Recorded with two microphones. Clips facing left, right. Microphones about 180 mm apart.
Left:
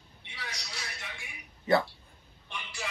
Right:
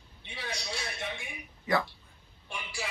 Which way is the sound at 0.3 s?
25° right (ahead or behind).